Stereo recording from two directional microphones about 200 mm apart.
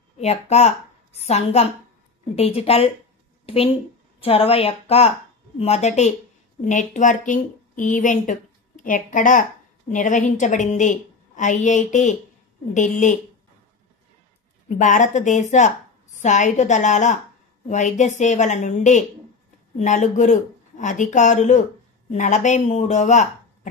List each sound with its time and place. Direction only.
0.2 s a woman's voice: 30° left (ahead or behind)
14.8 s speech: 40° left (ahead or behind)